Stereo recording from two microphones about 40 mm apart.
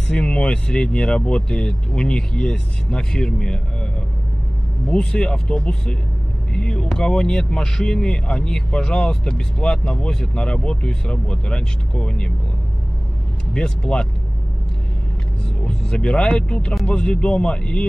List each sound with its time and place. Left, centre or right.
0.1 s speech: left
4.8 s speech: left
13.5 s speech: left
15.6 s speech: left